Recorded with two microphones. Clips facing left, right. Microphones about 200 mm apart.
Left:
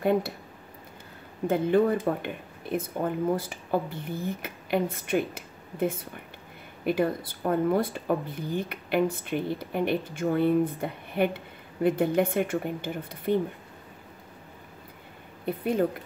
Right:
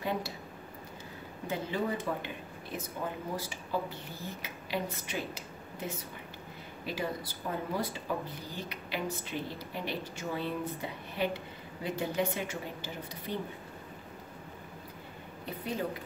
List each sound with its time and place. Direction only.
0.0 s speech: 55° left (ahead or behind)
1.5 s a woman's voice: 55° left (ahead or behind)
15.4 s speech: 55° left (ahead or behind)